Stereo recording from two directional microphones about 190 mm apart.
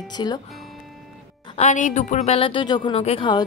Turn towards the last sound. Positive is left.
turn(degrees=25)  # may be behind; listen again after turning